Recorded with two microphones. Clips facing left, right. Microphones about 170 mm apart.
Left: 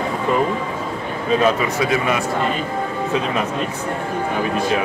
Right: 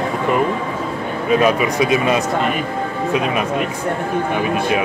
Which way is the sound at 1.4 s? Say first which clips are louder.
Right 1 dB; 15° right (ahead or behind).